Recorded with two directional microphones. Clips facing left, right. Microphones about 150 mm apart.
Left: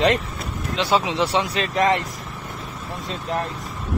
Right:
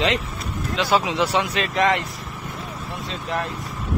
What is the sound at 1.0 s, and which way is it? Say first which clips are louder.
Speech: even; 30° left (ahead or behind).